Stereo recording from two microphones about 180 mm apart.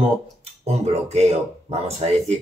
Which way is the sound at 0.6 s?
35° right (ahead or behind).